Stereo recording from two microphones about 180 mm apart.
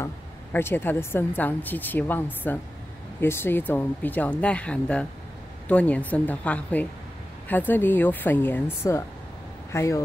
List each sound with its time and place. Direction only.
0.0 s a woman's voice: 10° left (ahead or behind)